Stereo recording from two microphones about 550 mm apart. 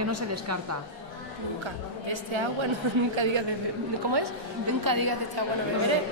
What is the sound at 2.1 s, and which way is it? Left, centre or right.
Speech, right.